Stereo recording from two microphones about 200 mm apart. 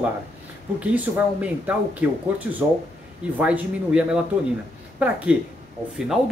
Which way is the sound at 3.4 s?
5° right (ahead or behind).